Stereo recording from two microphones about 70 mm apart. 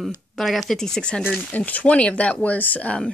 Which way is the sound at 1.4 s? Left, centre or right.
Left.